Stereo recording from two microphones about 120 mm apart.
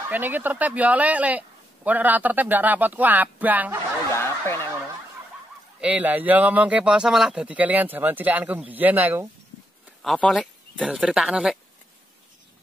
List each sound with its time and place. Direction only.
0.1 s speech: 15° right (ahead or behind)
4.1 s snicker: 20° left (ahead or behind)
5.8 s speech: 10° right (ahead or behind)
10.0 s speech: 5° left (ahead or behind)
10.4 s speech: 5° right (ahead or behind)